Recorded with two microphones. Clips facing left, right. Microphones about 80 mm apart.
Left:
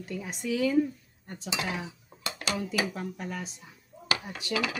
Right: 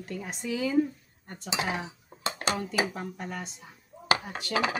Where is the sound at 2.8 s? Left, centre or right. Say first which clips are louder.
Right 1 dB; right.